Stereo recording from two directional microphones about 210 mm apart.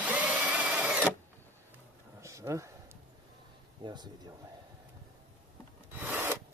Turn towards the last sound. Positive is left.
turn(degrees=-10)  # may be behind; listen again after turning